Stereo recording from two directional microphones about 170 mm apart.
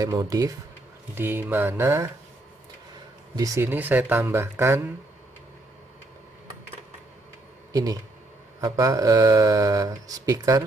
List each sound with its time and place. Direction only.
0.0 s speech: 20° right (ahead or behind)
3.3 s speech: 20° right (ahead or behind)
7.7 s speech: 20° right (ahead or behind)